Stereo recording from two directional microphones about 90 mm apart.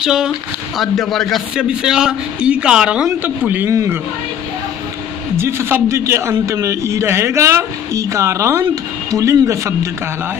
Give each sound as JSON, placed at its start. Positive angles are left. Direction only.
{"t": 0.0, "sound": "speech", "side_deg": -5}
{"t": 1.6, "sound": "speech", "side_deg": -10}
{"t": 3.4, "sound": "speech", "side_deg": -20}
{"t": 3.7, "sound": "speech", "side_deg": -35}
{"t": 5.3, "sound": "speech", "side_deg": -30}